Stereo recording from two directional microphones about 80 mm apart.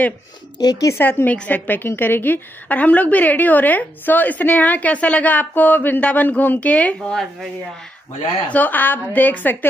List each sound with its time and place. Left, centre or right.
0.6 s speech: left
0.9 s a woman's voice: left
8.5 s a woman's voice: left